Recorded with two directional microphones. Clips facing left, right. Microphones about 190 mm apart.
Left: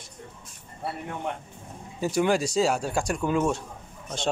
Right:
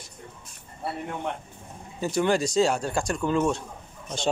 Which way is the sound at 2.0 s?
10° left (ahead or behind).